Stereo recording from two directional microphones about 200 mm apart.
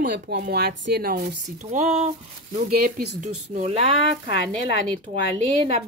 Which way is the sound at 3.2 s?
35° right (ahead or behind).